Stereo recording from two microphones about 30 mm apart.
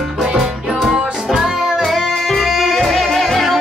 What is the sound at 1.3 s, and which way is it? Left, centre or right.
Music, centre.